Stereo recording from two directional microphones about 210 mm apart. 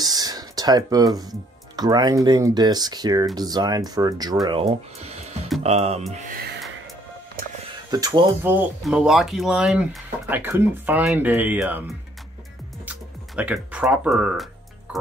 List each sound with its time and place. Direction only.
0.0 s a sound: 20° right (ahead or behind)
1.8 s speech: 20° right (ahead or behind)
7.9 s speech: 20° right (ahead or behind)
13.4 s speech: 5° right (ahead or behind)